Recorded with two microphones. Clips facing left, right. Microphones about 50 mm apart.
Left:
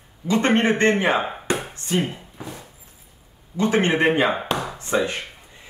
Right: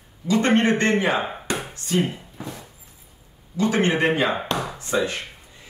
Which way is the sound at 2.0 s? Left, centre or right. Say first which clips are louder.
Right 1 dB; centre.